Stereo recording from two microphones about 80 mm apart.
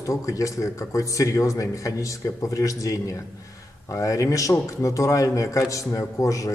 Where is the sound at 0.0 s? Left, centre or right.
Left.